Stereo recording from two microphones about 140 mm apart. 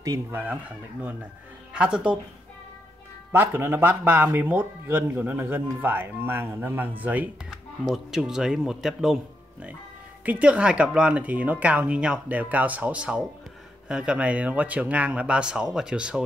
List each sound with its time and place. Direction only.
0.0 s speech: 25° right (ahead or behind)
0.4 s speech: 10° right (ahead or behind)
3.3 s a man's voice: 15° right (ahead or behind)